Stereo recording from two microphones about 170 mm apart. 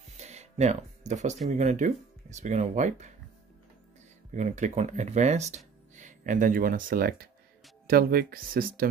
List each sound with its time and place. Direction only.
0.2 s music: 40° right (ahead or behind)
1.5 s speech: 45° right (ahead or behind)
4.3 s speech: 45° right (ahead or behind)